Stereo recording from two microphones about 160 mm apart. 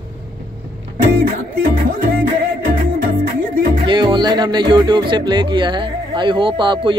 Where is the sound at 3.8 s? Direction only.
30° right (ahead or behind).